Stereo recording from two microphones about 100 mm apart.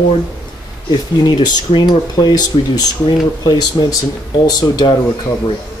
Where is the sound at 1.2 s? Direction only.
50° left (ahead or behind).